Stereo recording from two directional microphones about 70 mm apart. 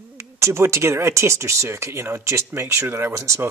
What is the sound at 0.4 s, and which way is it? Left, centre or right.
Speech, right.